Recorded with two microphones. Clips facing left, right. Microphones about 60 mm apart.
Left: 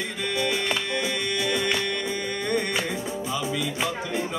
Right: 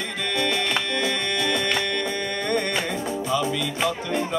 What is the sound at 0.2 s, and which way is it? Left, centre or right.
Music, centre.